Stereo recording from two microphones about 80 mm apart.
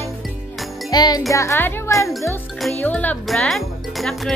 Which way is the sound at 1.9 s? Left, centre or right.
Centre.